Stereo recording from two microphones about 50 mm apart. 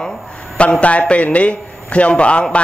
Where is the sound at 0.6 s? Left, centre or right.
Left.